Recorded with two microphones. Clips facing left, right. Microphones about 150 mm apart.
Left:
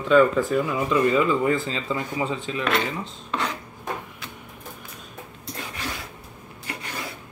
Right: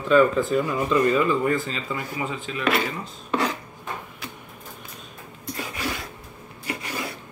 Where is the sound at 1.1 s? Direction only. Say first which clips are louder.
Left 1 dB; 20° left (ahead or behind).